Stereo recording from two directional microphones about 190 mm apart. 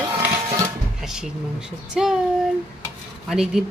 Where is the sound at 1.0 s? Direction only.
5° right (ahead or behind).